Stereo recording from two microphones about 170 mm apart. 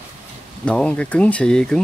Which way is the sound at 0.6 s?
5° left (ahead or behind).